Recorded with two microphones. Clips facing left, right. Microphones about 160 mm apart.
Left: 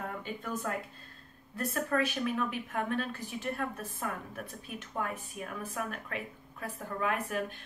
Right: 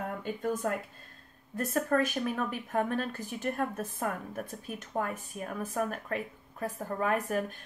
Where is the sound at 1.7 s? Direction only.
45° right (ahead or behind).